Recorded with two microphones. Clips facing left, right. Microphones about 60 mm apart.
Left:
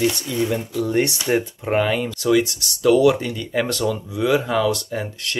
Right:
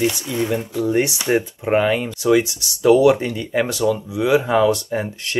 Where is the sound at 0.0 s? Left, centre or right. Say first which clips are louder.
Even; centre.